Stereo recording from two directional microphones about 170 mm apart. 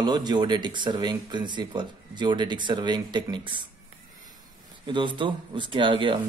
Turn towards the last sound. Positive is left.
turn(degrees=-30)  # may be behind; listen again after turning